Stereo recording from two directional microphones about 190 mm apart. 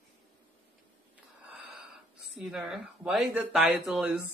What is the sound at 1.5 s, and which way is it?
Wheeze, centre (ahead or behind).